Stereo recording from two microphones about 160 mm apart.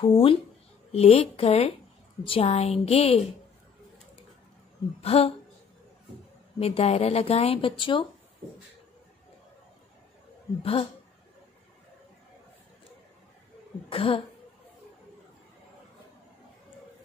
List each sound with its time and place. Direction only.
0.0 s speech: 35° left (ahead or behind)
5.0 s speech: 40° left (ahead or behind)
6.6 s speech: 40° left (ahead or behind)
10.6 s speech: 35° left (ahead or behind)
13.8 s speech: 35° left (ahead or behind)